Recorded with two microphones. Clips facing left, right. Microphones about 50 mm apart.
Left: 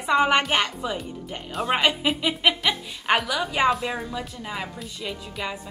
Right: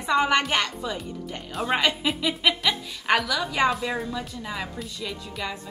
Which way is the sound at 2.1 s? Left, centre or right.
Left.